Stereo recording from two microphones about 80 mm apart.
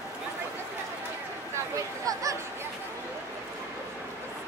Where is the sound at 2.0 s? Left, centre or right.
Right.